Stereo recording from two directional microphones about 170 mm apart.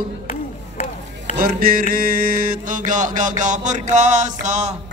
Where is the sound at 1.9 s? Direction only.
55° right (ahead or behind).